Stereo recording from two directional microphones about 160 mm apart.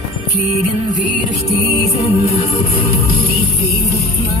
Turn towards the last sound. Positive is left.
turn(degrees=40)  # may be behind; listen again after turning